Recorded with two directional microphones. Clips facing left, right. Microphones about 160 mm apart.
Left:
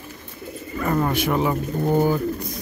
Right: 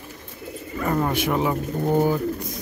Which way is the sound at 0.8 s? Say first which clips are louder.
Left 1 dB; 10° right (ahead or behind).